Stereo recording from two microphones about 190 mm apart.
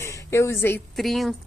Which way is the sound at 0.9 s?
Centre (ahead or behind).